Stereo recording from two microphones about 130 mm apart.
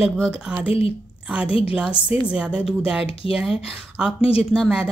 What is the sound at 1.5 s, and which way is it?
Speech, 45° left (ahead or behind).